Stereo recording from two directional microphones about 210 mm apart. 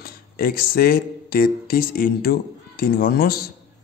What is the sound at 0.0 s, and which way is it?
Speech, 45° left (ahead or behind).